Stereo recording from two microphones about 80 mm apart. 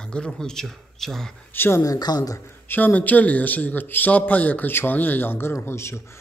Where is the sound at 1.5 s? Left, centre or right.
Left.